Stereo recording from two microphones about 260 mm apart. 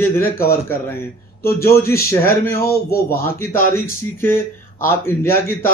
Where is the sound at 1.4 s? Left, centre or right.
Left.